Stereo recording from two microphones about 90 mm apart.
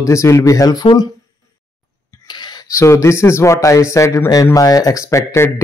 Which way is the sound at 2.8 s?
35° left (ahead or behind).